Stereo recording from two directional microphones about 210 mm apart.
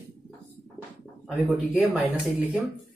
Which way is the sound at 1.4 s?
5° right (ahead or behind).